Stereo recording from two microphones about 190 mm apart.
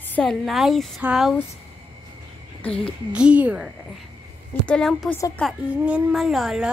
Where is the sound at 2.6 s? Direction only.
5° left (ahead or behind).